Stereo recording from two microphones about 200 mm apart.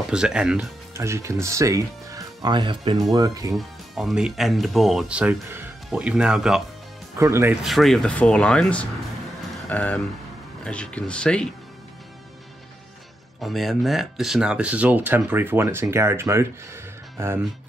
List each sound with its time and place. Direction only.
0.1 s speech: 5° right (ahead or behind)
0.9 s speech: 15° right (ahead or behind)
3.5 s speech: centre (ahead or behind)
7.2 s speech: 15° right (ahead or behind)
7.6 s speech: centre (ahead or behind)
13.4 s speech: centre (ahead or behind)